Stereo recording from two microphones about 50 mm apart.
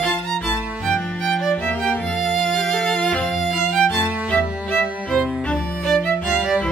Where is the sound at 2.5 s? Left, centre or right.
Centre; by 4.5 s left.